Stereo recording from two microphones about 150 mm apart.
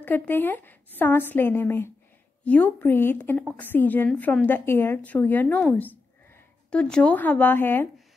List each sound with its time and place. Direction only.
0.0 s speech: 10° left (ahead or behind)